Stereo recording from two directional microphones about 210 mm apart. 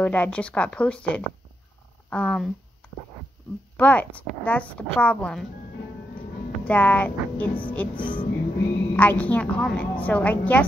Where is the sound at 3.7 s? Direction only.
5° left (ahead or behind).